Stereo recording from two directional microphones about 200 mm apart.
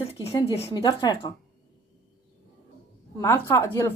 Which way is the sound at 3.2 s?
15° left (ahead or behind).